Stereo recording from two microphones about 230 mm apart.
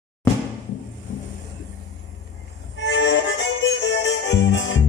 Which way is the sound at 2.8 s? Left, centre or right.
Left.